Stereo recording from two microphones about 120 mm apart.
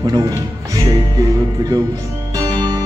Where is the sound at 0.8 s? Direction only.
30° right (ahead or behind).